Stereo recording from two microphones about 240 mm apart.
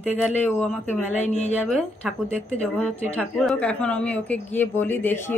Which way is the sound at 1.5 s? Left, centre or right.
Centre.